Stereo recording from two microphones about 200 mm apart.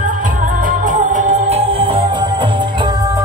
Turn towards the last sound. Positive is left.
turn(degrees=-25)  # may be behind; listen again after turning